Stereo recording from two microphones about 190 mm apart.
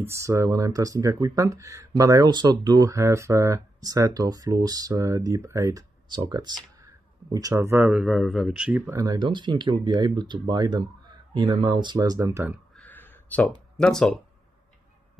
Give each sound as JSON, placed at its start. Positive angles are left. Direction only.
{"t": 0.0, "sound": "speech", "side_deg": -15}
{"t": 7.7, "sound": "speech", "side_deg": -5}
{"t": 8.9, "sound": "speech", "side_deg": -20}
{"t": 12.7, "sound": "a sound", "side_deg": 10}
{"t": 13.7, "sound": "speech", "side_deg": 5}